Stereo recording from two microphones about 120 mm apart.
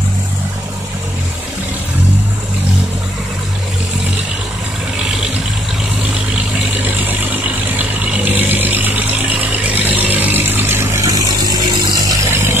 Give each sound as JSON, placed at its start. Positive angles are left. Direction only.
{"t": 6.8, "sound": "vehicle", "side_deg": -15}